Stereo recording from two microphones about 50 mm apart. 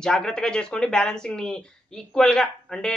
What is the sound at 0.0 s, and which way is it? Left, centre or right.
Speech, centre.